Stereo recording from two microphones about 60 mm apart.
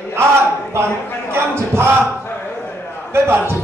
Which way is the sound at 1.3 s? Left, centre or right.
Right.